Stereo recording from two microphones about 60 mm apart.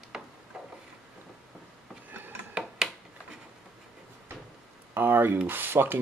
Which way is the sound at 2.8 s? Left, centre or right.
Centre.